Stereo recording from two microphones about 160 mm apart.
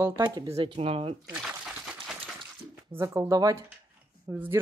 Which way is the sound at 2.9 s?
15° right (ahead or behind).